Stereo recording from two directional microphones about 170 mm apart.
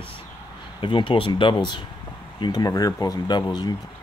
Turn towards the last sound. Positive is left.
turn(degrees=25)  # may be behind; listen again after turning